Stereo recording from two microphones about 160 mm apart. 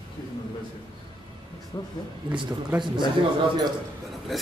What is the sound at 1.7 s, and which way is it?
Speech, 25° left (ahead or behind).